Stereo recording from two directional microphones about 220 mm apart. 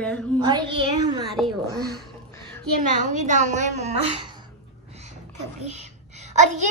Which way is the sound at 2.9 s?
35° right (ahead or behind).